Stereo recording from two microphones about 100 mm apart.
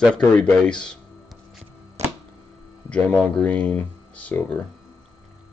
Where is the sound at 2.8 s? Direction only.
10° left (ahead or behind).